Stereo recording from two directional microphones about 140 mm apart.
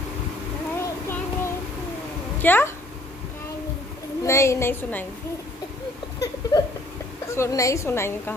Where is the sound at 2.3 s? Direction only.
15° left (ahead or behind).